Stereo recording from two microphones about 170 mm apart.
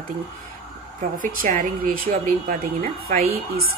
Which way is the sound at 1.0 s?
50° right (ahead or behind).